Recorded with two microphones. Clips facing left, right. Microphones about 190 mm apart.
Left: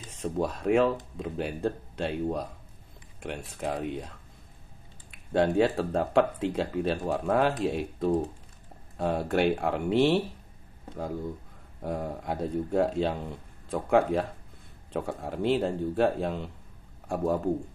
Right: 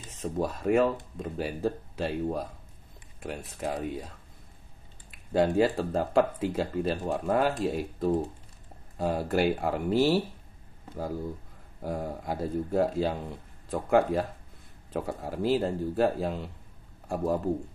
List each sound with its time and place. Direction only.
0.1 s speech: centre (ahead or behind)
5.1 s speech: centre (ahead or behind)
11.8 s speech: centre (ahead or behind)